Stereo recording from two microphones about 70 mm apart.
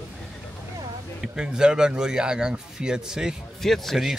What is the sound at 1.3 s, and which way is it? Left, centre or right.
A man's voice, centre.